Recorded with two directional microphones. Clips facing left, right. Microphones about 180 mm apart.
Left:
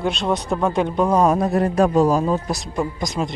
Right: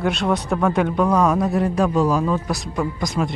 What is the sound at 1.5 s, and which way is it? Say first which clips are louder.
Speech: left 2 dB; 45° left (ahead or behind).